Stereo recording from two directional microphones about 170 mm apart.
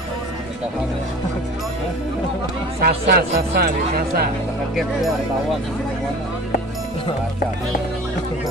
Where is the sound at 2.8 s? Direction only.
65° right (ahead or behind).